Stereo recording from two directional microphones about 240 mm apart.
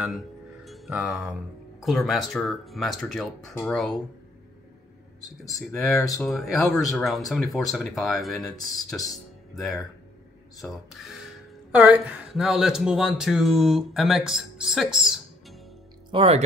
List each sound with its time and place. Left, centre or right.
0.7 s music: centre
1.8 s speech: centre
5.4 s speech: centre
5.9 s speech: centre
6.2 s speech: centre
16.1 s speech: right